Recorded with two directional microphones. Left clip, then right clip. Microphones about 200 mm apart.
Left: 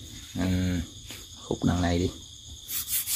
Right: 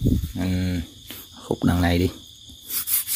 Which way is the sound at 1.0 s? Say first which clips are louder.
Right 7 dB; 35° right (ahead or behind).